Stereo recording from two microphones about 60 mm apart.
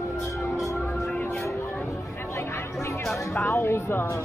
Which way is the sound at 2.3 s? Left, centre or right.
Left.